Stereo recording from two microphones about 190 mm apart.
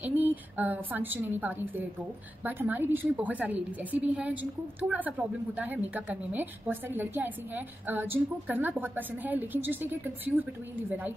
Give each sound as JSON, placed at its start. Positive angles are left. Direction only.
{"t": 0.0, "sound": "a woman's voice", "side_deg": -10}